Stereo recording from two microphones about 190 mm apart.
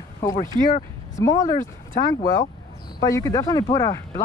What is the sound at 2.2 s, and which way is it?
Speech, 50° left (ahead or behind).